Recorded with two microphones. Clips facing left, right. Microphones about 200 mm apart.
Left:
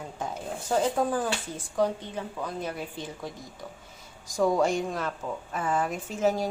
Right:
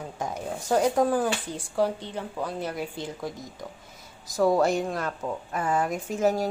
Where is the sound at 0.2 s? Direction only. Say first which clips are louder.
Right 2 dB; 10° right (ahead or behind).